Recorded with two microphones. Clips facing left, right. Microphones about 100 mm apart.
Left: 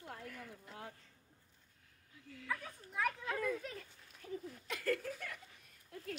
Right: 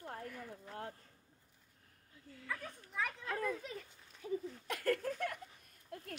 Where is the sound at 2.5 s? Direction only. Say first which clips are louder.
Left 2 dB; 5° left (ahead or behind).